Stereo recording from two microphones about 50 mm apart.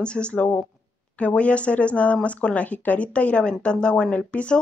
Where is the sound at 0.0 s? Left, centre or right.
Left.